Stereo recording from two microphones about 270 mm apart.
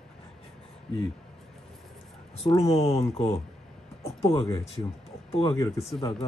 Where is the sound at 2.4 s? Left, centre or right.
Centre.